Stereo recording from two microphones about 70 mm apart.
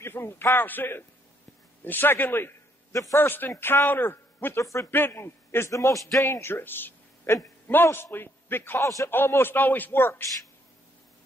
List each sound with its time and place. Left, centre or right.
0.0 s a man's voice: left
2.9 s a man's voice: left
3.2 s a man's voice: left
8.7 s a man's voice: left
9.1 s a man's voice: left